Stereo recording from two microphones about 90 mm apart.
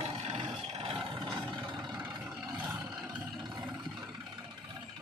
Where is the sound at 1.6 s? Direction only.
45° right (ahead or behind).